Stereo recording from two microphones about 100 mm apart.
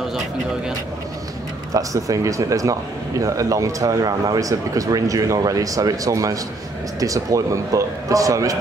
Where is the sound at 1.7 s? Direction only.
35° right (ahead or behind).